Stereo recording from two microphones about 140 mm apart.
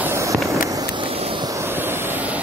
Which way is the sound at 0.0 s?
20° right (ahead or behind).